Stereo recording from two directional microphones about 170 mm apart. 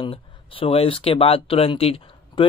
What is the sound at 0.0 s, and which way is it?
Speech, 30° left (ahead or behind).